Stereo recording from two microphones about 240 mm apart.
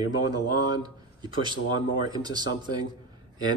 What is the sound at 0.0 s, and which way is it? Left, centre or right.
Speech, centre.